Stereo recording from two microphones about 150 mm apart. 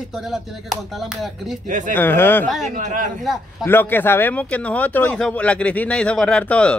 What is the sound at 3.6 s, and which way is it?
Speech, 15° left (ahead or behind).